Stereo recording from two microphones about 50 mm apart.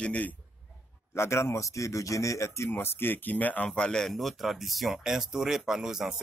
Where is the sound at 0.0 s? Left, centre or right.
Left.